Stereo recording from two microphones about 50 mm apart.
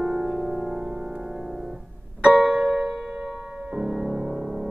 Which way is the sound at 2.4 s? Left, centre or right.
Centre.